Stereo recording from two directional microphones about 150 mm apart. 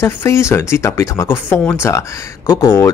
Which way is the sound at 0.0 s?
20° left (ahead or behind).